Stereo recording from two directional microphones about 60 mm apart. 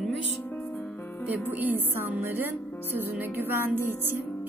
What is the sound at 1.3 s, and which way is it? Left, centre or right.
Speech, right.